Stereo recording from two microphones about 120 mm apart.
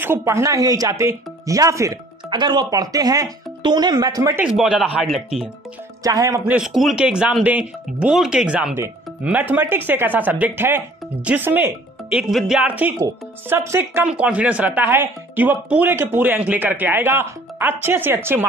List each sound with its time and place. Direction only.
0.0 s speech: 20° right (ahead or behind)
2.2 s speech: 40° right (ahead or behind)
4.4 s speech: 5° right (ahead or behind)
6.0 s speech: 30° right (ahead or behind)
6.4 s speech: 5° right (ahead or behind)
13.0 s speech: 20° right (ahead or behind)